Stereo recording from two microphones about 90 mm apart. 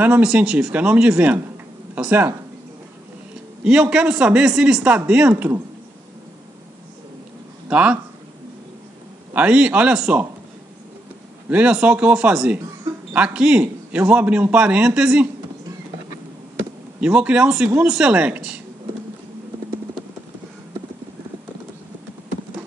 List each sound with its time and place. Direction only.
0.0 s a man's voice: 15° right (ahead or behind)
3.6 s a man's voice: 10° right (ahead or behind)
5.3 s speech: 25° right (ahead or behind)
7.6 s speech: 15° right (ahead or behind)
9.3 s a man's voice: 15° right (ahead or behind)
11.4 s a man's voice: 15° right (ahead or behind)
17.0 s a man's voice: 15° right (ahead or behind)